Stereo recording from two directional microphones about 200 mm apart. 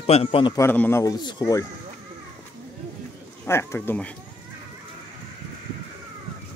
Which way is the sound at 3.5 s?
10° left (ahead or behind).